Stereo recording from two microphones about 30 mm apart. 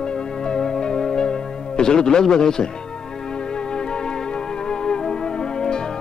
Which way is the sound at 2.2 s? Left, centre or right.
Left.